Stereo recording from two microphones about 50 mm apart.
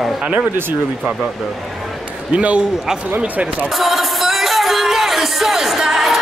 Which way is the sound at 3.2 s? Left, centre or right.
Right.